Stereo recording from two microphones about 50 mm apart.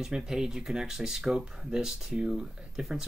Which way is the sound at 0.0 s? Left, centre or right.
Centre.